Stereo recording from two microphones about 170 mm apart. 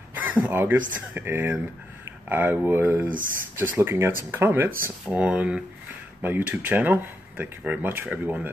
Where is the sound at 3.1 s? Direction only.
55° right (ahead or behind).